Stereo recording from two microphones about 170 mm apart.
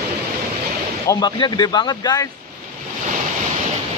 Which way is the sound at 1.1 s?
25° left (ahead or behind).